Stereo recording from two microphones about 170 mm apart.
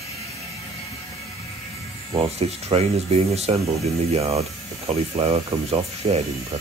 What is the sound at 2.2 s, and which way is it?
Speech, 35° right (ahead or behind).